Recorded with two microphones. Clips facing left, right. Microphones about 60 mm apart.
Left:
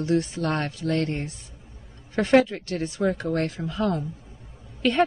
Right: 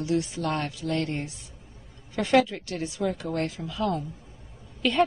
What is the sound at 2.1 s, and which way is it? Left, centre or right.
Speech, left.